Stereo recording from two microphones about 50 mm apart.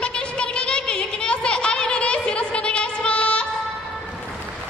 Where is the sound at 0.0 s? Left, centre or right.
Left.